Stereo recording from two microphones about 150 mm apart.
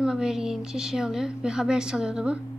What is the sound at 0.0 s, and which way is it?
A woman's voice, 5° right (ahead or behind).